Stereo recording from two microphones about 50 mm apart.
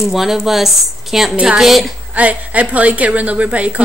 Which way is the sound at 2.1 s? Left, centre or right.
Right.